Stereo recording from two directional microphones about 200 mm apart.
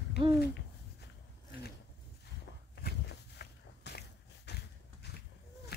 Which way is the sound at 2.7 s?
55° left (ahead or behind).